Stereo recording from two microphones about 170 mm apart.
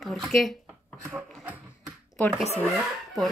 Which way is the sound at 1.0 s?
10° right (ahead or behind).